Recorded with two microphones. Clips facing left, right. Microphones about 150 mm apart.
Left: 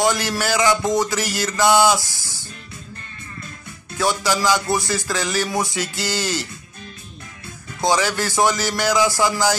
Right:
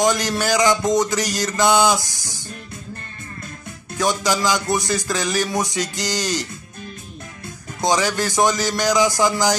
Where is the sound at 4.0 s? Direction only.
15° right (ahead or behind).